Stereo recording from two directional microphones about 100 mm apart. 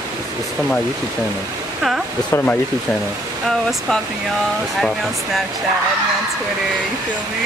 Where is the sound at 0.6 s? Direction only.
10° right (ahead or behind).